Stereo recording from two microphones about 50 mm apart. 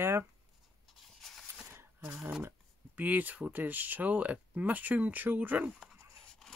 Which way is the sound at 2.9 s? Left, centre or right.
Right.